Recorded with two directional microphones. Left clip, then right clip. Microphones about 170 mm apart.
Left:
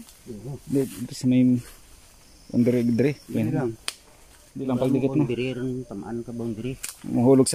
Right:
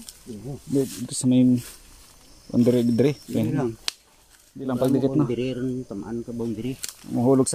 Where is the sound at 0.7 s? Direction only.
Centre (ahead or behind).